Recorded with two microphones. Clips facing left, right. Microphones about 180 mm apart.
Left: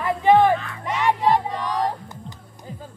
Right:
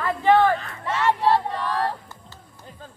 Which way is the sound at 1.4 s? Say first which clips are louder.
Left 1 dB; 15° left (ahead or behind).